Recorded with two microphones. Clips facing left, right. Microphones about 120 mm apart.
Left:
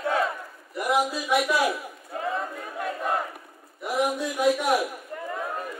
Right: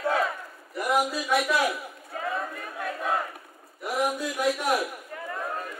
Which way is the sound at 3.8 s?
Centre (ahead or behind).